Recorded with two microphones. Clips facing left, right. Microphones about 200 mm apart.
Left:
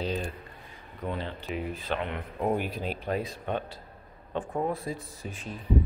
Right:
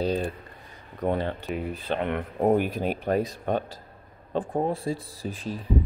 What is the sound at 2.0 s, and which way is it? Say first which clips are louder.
Speech: right 9 dB; 50° right (ahead or behind).